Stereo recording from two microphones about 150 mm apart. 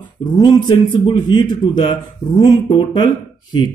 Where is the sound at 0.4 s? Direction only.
30° left (ahead or behind).